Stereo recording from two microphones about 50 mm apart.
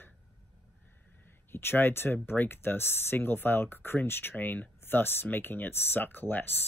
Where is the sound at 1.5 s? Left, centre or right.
Left.